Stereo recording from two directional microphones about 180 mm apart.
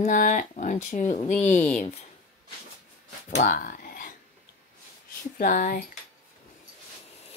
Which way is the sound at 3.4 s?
50° left (ahead or behind).